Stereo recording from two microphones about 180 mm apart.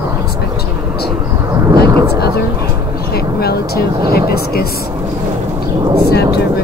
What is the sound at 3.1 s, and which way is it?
Speech, 60° left (ahead or behind).